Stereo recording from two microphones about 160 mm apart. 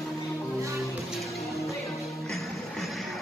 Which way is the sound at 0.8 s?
Centre (ahead or behind).